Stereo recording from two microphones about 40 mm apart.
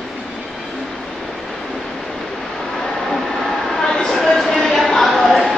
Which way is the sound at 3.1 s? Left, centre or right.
Centre.